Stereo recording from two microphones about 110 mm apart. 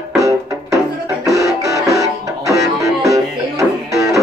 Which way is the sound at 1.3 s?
30° right (ahead or behind).